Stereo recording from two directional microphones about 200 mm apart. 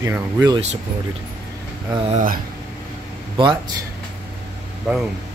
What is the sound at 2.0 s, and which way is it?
Speech, 40° right (ahead or behind).